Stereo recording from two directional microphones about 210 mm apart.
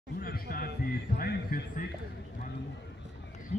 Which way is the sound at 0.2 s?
45° left (ahead or behind).